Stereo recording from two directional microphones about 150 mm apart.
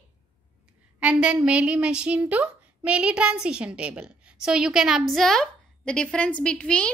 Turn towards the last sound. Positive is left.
turn(degrees=5)  # may be behind; listen again after turning